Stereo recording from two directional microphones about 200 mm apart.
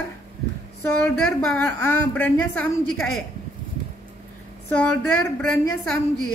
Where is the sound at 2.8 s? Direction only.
90° left.